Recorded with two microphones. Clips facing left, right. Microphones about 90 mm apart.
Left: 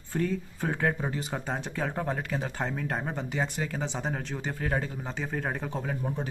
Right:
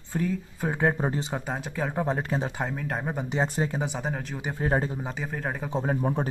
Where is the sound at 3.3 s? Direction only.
25° right (ahead or behind).